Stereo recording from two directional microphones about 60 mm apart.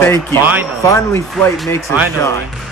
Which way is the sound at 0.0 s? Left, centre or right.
Left.